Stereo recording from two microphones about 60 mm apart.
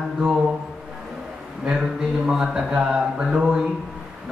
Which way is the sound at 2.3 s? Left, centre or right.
Centre.